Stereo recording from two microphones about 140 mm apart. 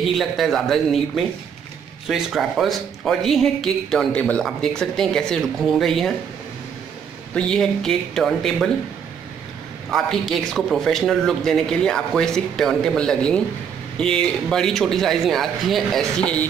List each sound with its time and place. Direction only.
0.1 s a man's voice: centre (ahead or behind)
7.3 s a man's voice: 5° left (ahead or behind)
9.8 s a man's voice: centre (ahead or behind)